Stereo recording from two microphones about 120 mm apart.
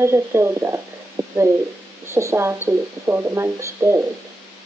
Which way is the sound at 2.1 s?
20° right (ahead or behind).